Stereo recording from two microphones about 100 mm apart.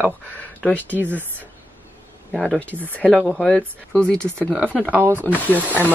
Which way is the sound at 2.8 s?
15° left (ahead or behind).